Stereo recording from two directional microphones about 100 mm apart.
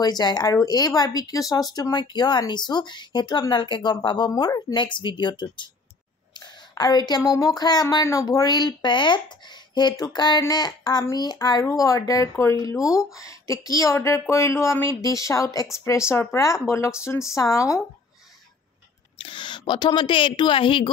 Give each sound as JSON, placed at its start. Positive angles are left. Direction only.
{"t": 0.0, "sound": "speech", "side_deg": 45}
{"t": 19.1, "sound": "speech", "side_deg": 55}